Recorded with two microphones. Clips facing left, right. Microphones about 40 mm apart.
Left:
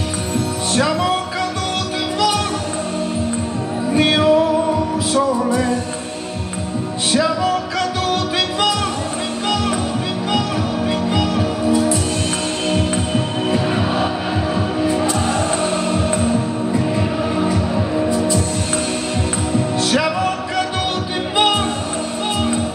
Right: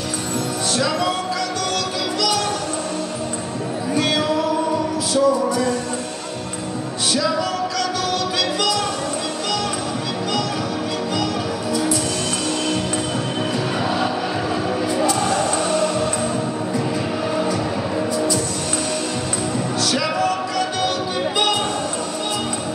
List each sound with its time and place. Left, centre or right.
3.9 s music: left
7.7 s music: left
19.8 s music: left